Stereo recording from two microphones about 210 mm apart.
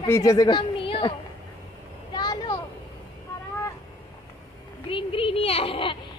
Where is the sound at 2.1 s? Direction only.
20° left (ahead or behind).